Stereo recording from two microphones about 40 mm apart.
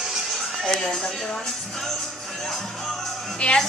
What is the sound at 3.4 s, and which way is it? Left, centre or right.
Speech, left.